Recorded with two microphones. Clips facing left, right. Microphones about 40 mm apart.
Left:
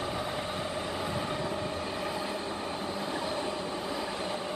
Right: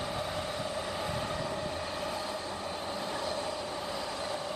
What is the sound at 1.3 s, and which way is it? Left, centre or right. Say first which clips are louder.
Train: left 2 dB; left.